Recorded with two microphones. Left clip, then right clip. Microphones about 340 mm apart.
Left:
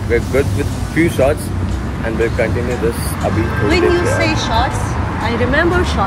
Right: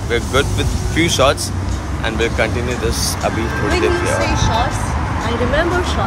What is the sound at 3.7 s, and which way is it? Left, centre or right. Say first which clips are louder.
Speech: left 3 dB; left.